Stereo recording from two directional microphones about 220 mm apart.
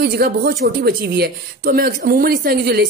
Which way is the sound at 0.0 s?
45° right (ahead or behind).